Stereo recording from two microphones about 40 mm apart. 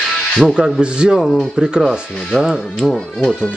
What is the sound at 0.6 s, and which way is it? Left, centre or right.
Rub, right.